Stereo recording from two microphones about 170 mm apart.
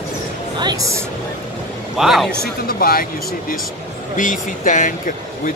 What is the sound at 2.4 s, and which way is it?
Speech, 60° left (ahead or behind).